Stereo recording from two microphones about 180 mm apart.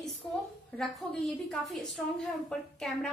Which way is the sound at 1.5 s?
Centre (ahead or behind).